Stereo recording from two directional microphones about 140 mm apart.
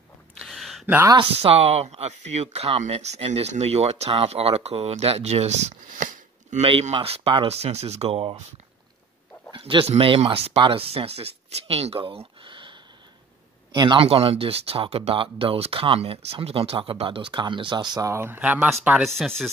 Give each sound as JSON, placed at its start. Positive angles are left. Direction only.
{"t": 0.4, "sound": "a sound", "side_deg": 0}
{"t": 0.8, "sound": "speech", "side_deg": -15}
{"t": 1.1, "sound": "speech", "side_deg": -45}
{"t": 6.6, "sound": "speech", "side_deg": -45}
{"t": 9.5, "sound": "speech", "side_deg": -40}
{"t": 12.4, "sound": "a sound", "side_deg": -35}
{"t": 13.7, "sound": "speech", "side_deg": -35}
{"t": 19.1, "sound": "speech", "side_deg": 5}